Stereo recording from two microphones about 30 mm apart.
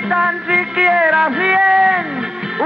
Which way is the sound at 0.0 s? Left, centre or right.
Centre.